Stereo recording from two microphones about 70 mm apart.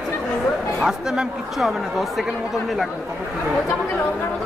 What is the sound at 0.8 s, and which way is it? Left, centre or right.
Speech, centre.